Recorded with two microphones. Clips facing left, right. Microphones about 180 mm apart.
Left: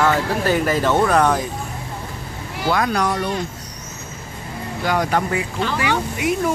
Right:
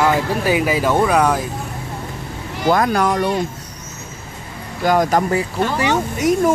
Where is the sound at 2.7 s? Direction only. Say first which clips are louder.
Right 4 dB; 50° right (ahead or behind).